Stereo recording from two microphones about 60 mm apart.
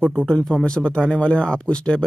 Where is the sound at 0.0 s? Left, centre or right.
Right.